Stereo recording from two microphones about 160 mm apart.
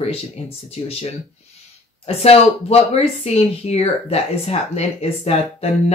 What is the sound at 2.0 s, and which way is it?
Speech, 40° left (ahead or behind).